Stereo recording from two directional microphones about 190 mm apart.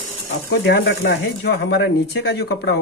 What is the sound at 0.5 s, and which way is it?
Speech, 65° left (ahead or behind).